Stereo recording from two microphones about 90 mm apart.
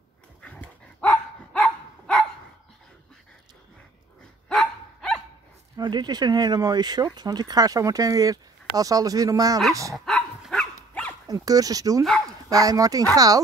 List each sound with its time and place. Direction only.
0.4 s dog: 15° left (ahead or behind)
4.5 s dog: 5° left (ahead or behind)
5.8 s speech: 55° right (ahead or behind)
9.9 s dog: 5° left (ahead or behind)
11.2 s speech: 40° right (ahead or behind)